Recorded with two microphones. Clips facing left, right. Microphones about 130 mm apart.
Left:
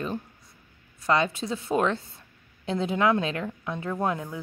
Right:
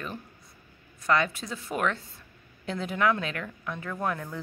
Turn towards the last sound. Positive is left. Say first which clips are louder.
# left 3 dB
turn(degrees=25)  # may be behind; listen again after turning